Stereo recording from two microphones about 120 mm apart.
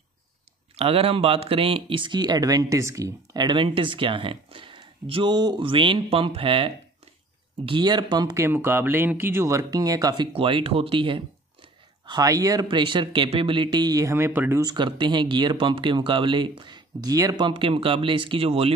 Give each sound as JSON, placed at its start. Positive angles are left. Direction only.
{"t": 0.7, "sound": "speech", "side_deg": -50}
{"t": 8.5, "sound": "speech", "side_deg": -20}
{"t": 12.1, "sound": "speech", "side_deg": -30}
{"t": 12.6, "sound": "speech", "side_deg": -45}
{"t": 14.6, "sound": "speech", "side_deg": -40}
{"t": 17.5, "sound": "speech", "side_deg": -45}